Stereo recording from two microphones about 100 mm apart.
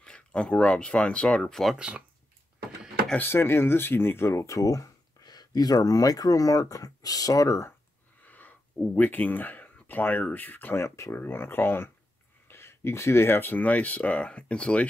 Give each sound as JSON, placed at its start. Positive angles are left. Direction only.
{"t": 0.0, "sound": "speech", "side_deg": 10}
{"t": 1.8, "sound": "speech", "side_deg": -10}
{"t": 3.2, "sound": "speech", "side_deg": 25}
{"t": 8.3, "sound": "speech", "side_deg": 15}